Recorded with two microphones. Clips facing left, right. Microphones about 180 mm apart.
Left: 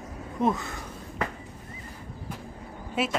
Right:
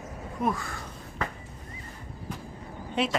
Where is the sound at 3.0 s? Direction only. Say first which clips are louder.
Even; 5° left (ahead or behind).